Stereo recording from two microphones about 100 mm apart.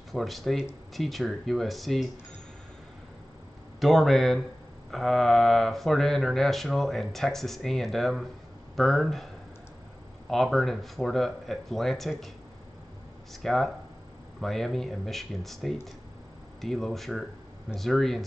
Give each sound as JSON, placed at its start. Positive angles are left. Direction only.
{"t": 0.1, "sound": "speech", "side_deg": 0}
{"t": 3.8, "sound": "speech", "side_deg": 0}
{"t": 10.3, "sound": "speech", "side_deg": 0}
{"t": 13.3, "sound": "speech", "side_deg": 0}